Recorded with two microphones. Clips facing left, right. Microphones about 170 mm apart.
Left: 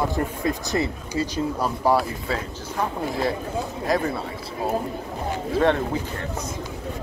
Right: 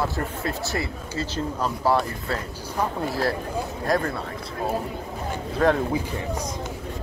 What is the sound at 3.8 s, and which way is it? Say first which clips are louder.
Speech: left 1 dB; centre (ahead or behind).